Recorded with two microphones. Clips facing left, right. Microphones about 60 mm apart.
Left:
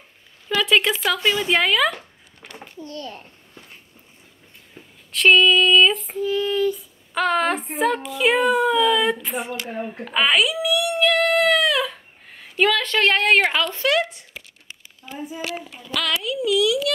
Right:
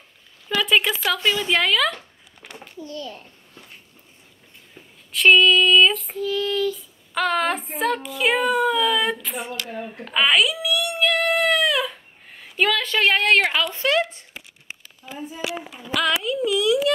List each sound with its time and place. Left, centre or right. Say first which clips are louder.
0.6 s child singing: left 1 dB; centre
1.3 s a woman's voice: left 1 dB; centre
2.8 s a child's voice: even; left
4.8 s a sound: left 2 dB; left
5.1 s child singing: even; centre
6.1 s a woman's voice: left 2 dB; centre
7.2 s child singing: left 1 dB; centre
9.1 s a woman's voice: left 3 dB; centre
9.7 s a child's voice: left 3 dB; left
10.0 s speech: even; centre
13.7 s speech: even; right
15.0 s child singing: left 1 dB; centre
15.4 s a sound: right 1 dB; centre
16.4 s speech: even; right